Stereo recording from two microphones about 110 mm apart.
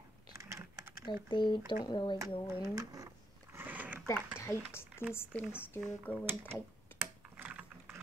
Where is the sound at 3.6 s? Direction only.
15° right (ahead or behind).